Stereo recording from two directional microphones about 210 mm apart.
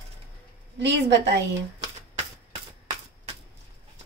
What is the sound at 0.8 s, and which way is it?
Speech, 55° right (ahead or behind).